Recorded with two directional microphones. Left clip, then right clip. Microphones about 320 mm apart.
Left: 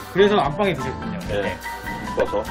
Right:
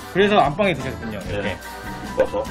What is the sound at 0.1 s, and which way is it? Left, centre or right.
Speech, centre.